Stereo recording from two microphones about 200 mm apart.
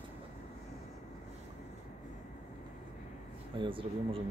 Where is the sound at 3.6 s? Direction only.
25° right (ahead or behind).